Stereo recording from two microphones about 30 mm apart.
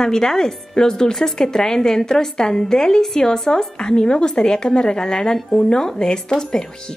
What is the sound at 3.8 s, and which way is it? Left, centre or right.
A woman's voice, left.